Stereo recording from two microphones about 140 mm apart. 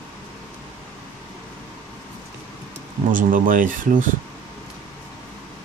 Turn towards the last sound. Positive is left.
turn(degrees=-75)  # may be behind; listen again after turning